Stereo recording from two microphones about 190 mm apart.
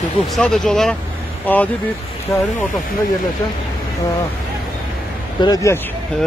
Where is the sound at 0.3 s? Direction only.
Centre (ahead or behind).